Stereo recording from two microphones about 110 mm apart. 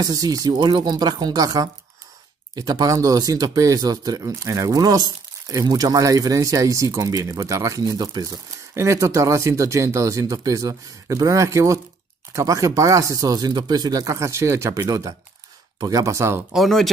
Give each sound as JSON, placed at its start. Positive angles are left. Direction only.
{"t": 0.0, "sound": "speech", "side_deg": -35}
{"t": 0.6, "sound": "speech", "side_deg": -45}
{"t": 16.5, "sound": "speech", "side_deg": 0}